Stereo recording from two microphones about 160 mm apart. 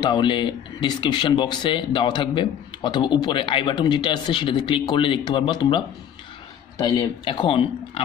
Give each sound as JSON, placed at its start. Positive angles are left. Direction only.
{"t": 0.0, "sound": "speech", "side_deg": 30}